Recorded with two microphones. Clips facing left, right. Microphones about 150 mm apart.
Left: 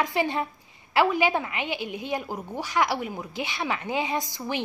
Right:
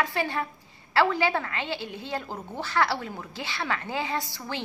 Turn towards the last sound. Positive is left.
turn(degrees=15)  # may be behind; listen again after turning